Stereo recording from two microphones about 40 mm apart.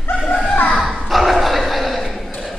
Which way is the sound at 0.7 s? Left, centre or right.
Centre.